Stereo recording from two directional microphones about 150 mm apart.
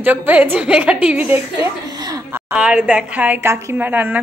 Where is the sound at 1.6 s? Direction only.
25° right (ahead or behind).